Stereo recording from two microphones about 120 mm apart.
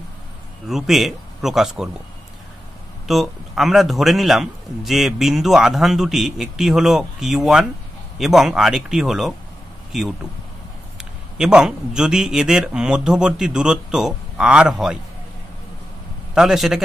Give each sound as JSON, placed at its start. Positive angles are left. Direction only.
{"t": 0.7, "sound": "a man's voice", "side_deg": -5}
{"t": 3.1, "sound": "a man's voice", "side_deg": 0}
{"t": 16.3, "sound": "a man's voice", "side_deg": 0}